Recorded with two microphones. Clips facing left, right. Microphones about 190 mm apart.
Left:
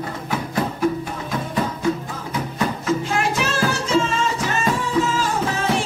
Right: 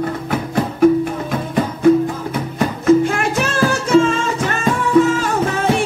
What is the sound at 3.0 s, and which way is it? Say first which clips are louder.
Music: right 4 dB; 55° right (ahead or behind).